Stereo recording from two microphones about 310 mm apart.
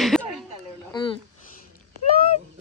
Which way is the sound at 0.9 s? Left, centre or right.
Centre.